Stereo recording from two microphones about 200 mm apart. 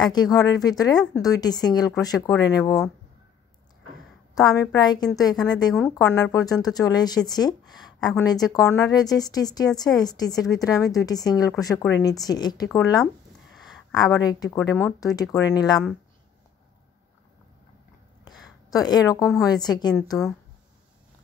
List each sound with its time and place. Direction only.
0.0 s a woman's voice: 20° left (ahead or behind)
4.4 s a woman's voice: 20° left (ahead or behind)
13.9 s a woman's voice: 20° left (ahead or behind)
18.2 s a sound: 20° left (ahead or behind)
19.4 s speech: 20° left (ahead or behind)